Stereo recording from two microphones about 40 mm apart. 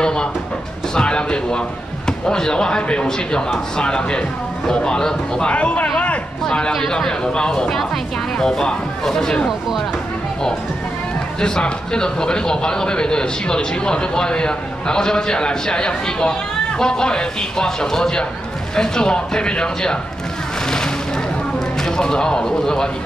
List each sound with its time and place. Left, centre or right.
0.0 s a sound: left
2.0 s a man's voice: centre
5.5 s a man's voice: left
7.7 s speech: centre
11.3 s a man's voice: centre
20.6 s music: centre
21.5 s speech: centre